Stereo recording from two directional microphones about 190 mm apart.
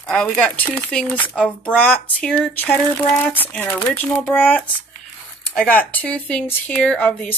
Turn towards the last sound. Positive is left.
turn(degrees=5)  # may be behind; listen again after turning